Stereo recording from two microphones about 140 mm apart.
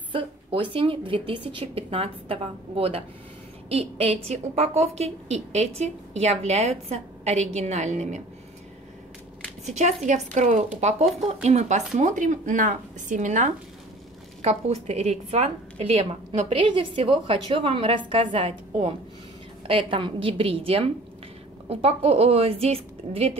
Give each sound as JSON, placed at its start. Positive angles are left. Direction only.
{"t": 0.1, "sound": "a woman's voice", "side_deg": -40}
{"t": 9.7, "sound": "a woman's voice", "side_deg": -55}
{"t": 14.4, "sound": "a woman's voice", "side_deg": -50}
{"t": 19.7, "sound": "a woman's voice", "side_deg": -40}